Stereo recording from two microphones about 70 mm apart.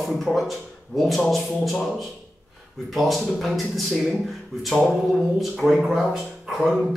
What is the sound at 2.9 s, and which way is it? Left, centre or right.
Speech, centre.